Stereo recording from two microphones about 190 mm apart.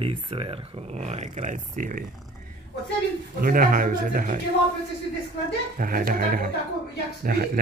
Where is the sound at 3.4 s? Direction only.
45° right (ahead or behind).